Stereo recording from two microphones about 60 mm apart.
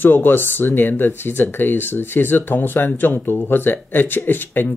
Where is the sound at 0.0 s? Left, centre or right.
Left.